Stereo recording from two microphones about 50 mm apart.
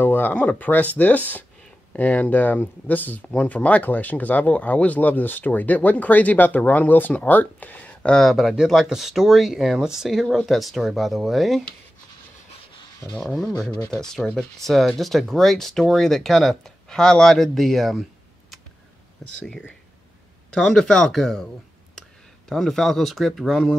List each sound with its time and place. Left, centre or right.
0.0 s a sound: left
0.4 s speech: left
3.3 s speech: left
8.2 s speech: centre
13.2 s speech: centre
19.2 s speech: centre
20.5 s speech: centre
22.5 s speech: centre